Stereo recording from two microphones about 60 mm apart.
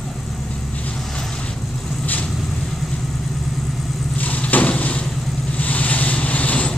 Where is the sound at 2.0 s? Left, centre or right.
Left.